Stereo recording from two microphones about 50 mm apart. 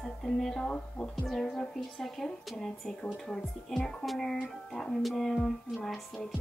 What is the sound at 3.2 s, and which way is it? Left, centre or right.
Speech, centre.